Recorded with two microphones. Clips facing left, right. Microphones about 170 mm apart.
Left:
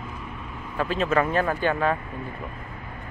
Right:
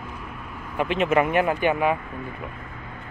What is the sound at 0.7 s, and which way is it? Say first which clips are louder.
Speech: right 2 dB; 20° right (ahead or behind).